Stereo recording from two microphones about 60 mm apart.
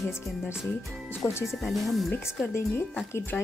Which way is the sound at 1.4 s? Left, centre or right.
Centre.